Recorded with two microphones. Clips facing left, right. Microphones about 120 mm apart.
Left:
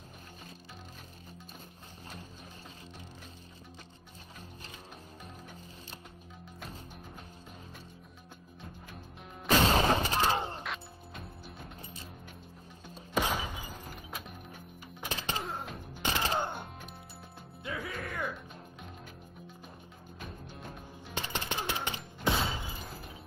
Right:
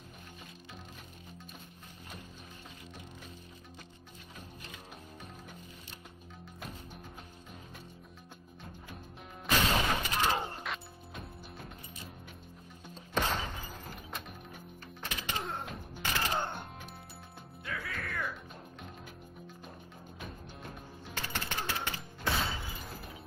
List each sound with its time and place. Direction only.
9.8 s gunshot: 35° left (ahead or behind)
10.6 s music: centre (ahead or behind)
12.9 s music: 10° left (ahead or behind)
15.0 s music: 30° left (ahead or behind)
15.3 s music: centre (ahead or behind)
16.0 s music: 20° left (ahead or behind)
21.1 s a sound: 20° left (ahead or behind)